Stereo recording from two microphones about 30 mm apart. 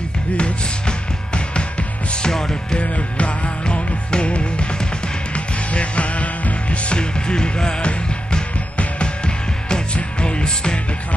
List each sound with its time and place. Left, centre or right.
0.4 s music: left
2.2 s music: left
2.8 s music: left
5.7 s music: left
7.0 s music: left
9.0 s music: left